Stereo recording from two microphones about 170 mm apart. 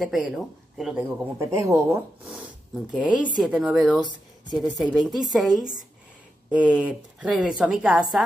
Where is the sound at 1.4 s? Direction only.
15° right (ahead or behind).